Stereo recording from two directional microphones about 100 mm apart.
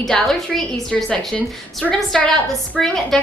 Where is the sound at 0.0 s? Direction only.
5° left (ahead or behind).